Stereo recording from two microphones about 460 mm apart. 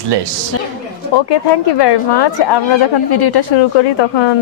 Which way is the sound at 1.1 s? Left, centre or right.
Left.